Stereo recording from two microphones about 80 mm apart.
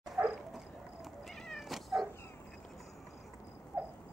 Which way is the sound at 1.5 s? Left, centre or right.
Centre.